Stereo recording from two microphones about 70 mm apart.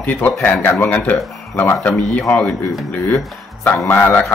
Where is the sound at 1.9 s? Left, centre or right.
Centre.